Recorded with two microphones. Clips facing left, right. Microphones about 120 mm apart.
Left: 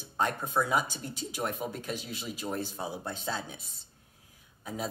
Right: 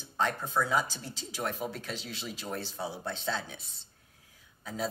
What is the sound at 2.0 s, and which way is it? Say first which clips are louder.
Speech: left 3 dB; 10° left (ahead or behind).